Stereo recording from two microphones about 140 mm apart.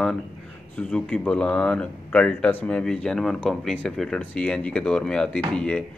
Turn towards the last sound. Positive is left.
turn(degrees=5)  # may be behind; listen again after turning